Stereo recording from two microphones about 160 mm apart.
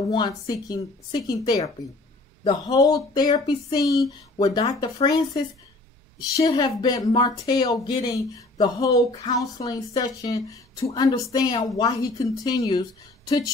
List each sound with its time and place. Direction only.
0.1 s speech: 25° left (ahead or behind)